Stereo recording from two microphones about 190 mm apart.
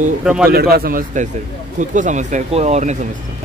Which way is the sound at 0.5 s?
55° right (ahead or behind).